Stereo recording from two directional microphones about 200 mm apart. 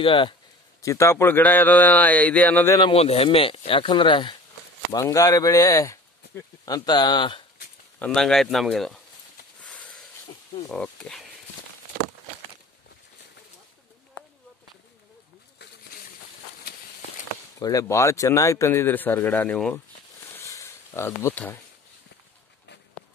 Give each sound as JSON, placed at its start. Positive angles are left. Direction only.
{"t": 0.0, "sound": "speech", "side_deg": 25}
{"t": 0.8, "sound": "a man's voice", "side_deg": 15}
{"t": 2.8, "sound": "a man's voice", "side_deg": 30}
{"t": 8.0, "sound": "speech", "side_deg": 5}
{"t": 9.6, "sound": "a sound", "side_deg": 5}
{"t": 10.7, "sound": "speech", "side_deg": 5}
{"t": 17.6, "sound": "a man's voice", "side_deg": 15}
{"t": 20.3, "sound": "a sound", "side_deg": 15}